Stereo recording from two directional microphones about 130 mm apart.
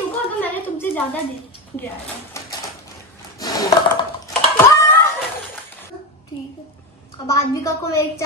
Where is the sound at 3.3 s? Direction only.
25° left (ahead or behind).